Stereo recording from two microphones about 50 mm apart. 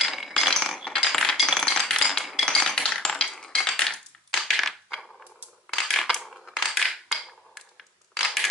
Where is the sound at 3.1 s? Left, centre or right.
Centre.